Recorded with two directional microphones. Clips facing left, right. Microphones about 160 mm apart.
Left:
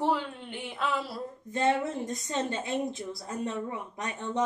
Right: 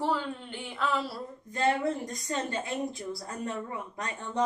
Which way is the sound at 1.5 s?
25° left (ahead or behind).